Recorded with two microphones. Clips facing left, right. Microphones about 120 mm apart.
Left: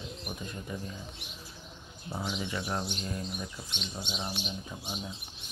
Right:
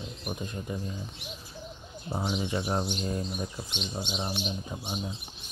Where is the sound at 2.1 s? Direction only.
30° right (ahead or behind).